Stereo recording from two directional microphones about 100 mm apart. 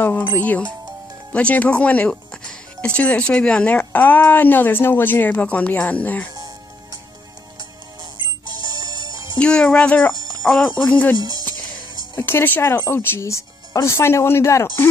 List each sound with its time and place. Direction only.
0.0 s speech: 20° left (ahead or behind)
8.5 s music: 45° right (ahead or behind)
9.4 s speech: 10° left (ahead or behind)
11.1 s speech: 45° right (ahead or behind)
12.2 s speech: 20° left (ahead or behind)